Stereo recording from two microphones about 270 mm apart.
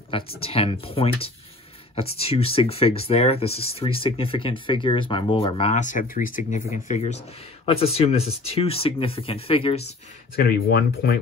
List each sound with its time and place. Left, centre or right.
0.4 s speech: left
10.3 s speech: left